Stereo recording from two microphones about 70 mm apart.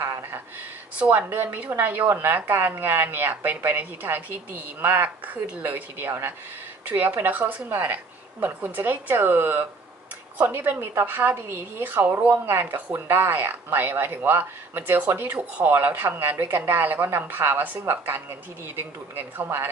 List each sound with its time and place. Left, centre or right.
0.9 s a woman's voice: centre
15.7 s a woman's voice: right